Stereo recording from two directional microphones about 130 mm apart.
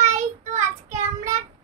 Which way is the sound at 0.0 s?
70° right (ahead or behind).